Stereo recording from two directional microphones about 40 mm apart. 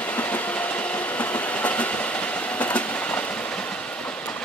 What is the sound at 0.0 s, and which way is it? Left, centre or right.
Train, left.